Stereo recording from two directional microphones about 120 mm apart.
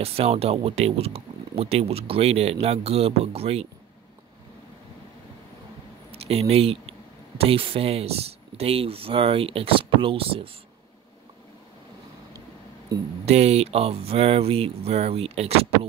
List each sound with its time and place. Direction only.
0.0 s speech: 55° right (ahead or behind)
6.1 s speech: 55° right (ahead or behind)
13.2 s speech: 65° right (ahead or behind)